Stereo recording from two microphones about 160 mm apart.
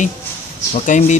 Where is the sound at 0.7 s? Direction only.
45° left (ahead or behind).